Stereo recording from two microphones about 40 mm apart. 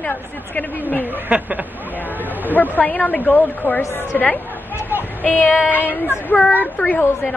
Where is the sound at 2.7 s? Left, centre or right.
Left.